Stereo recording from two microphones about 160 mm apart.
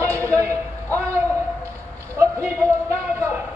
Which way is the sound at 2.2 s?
15° right (ahead or behind).